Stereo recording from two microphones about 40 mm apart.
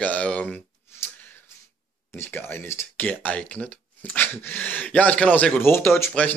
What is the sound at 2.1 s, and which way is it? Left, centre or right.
Speech, left.